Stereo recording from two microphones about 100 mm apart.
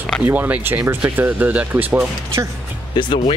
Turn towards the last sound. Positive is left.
turn(degrees=55)  # may be behind; listen again after turning